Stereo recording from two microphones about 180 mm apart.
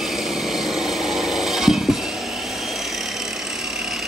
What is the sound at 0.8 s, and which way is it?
Tools, 5° right (ahead or behind).